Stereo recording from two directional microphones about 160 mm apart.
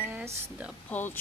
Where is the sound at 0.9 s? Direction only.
10° left (ahead or behind).